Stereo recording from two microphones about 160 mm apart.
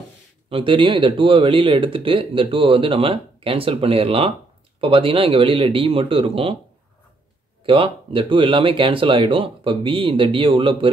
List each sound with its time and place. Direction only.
0.5 s speech: 35° right (ahead or behind)
7.6 s speech: 35° right (ahead or behind)